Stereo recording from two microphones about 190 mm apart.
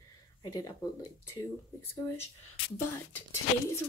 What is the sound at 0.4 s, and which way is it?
Speech, 20° left (ahead or behind).